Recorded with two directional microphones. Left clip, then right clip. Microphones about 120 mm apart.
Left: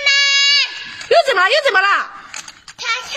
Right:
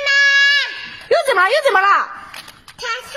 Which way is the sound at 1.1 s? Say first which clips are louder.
Left 2 dB; centre (ahead or behind).